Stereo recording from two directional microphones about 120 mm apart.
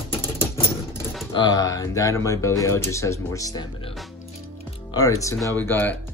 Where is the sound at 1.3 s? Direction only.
35° left (ahead or behind).